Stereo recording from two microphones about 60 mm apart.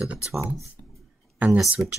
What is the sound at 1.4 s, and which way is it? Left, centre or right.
Speech, right.